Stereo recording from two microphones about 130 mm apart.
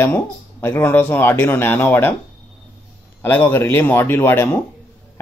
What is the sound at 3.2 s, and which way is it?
Speech, 15° left (ahead or behind).